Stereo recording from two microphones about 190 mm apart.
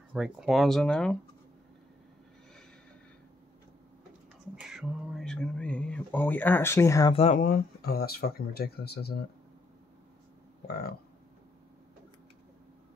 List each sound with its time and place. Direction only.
0.1 s speech: centre (ahead or behind)
4.6 s speech: 5° right (ahead or behind); by 7.1 s 15° left (ahead or behind)
7.1 s speech: 30° left (ahead or behind)
7.3 s speech: 50° left (ahead or behind)
10.7 s speech: 55° left (ahead or behind)